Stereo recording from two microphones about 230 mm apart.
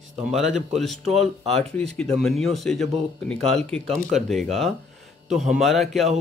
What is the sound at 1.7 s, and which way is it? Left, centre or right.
Speech, centre.